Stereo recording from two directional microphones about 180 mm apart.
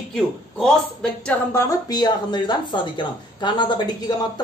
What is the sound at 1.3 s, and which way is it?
Speech, 15° left (ahead or behind).